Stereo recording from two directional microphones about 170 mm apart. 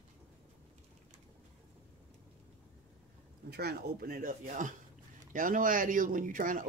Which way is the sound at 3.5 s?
70° right (ahead or behind).